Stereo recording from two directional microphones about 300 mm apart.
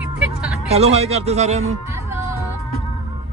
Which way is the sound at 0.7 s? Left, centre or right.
Right.